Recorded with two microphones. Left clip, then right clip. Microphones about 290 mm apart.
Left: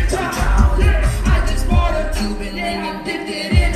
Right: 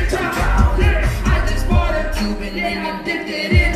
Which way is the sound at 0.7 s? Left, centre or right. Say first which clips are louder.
Right 1 dB; left.